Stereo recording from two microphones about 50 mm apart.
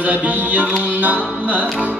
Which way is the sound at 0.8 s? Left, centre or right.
Right.